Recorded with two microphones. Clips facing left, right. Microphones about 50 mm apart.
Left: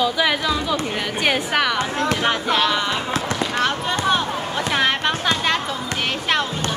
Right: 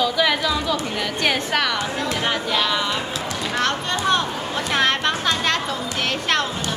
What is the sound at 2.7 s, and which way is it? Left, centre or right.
Speech, centre.